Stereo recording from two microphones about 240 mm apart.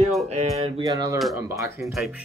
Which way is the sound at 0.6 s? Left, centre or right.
Right.